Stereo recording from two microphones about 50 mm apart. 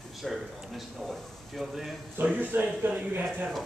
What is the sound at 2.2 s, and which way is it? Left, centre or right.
Speech, right.